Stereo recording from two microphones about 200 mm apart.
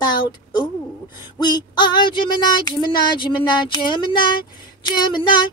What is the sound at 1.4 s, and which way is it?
Female singing, 20° left (ahead or behind).